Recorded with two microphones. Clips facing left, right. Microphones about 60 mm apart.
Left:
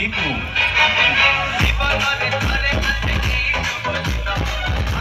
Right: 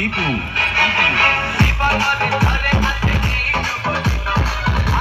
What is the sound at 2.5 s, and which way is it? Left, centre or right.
Music, right.